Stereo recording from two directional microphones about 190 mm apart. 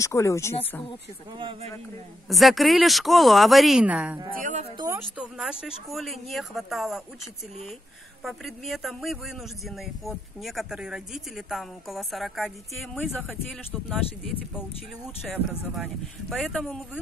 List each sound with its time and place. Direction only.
0.0 s speech: 15° left (ahead or behind)
2.2 s speech: centre (ahead or behind)
4.3 s speech: 45° right (ahead or behind)
4.7 s speech: 15° right (ahead or behind)
8.2 s speech: centre (ahead or behind)
13.8 s speech: 5° right (ahead or behind)